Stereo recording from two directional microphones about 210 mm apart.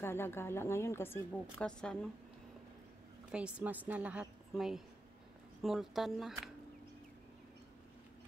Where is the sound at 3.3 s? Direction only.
5° right (ahead or behind).